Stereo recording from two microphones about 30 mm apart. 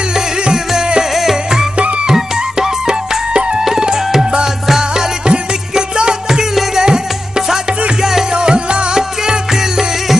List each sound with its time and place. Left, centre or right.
0.1 s music: right
5.2 s music: right
8.4 s music: right
9.2 s music: centre